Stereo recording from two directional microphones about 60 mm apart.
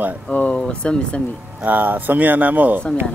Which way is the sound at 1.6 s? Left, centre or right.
Right.